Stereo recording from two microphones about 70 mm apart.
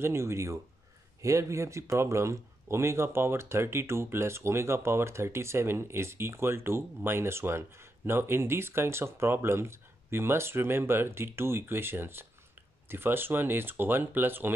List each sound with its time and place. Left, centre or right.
0.0 s speech: right